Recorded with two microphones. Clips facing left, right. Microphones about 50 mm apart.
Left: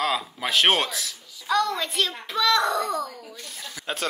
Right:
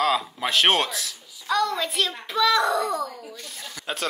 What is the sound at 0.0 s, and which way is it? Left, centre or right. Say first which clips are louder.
A child's voice: right 3 dB; centre.